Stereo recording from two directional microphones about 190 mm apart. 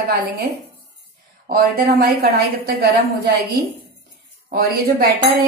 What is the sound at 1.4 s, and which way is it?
A woman's voice, 50° right (ahead or behind).